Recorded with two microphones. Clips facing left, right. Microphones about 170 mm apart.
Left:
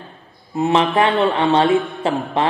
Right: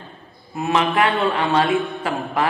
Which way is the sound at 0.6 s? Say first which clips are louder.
Left 3 dB; 25° left (ahead or behind).